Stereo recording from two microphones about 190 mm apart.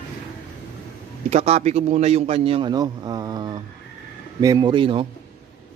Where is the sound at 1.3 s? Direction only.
35° right (ahead or behind).